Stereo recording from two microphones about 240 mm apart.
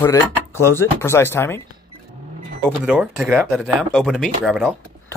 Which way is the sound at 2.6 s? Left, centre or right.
Centre.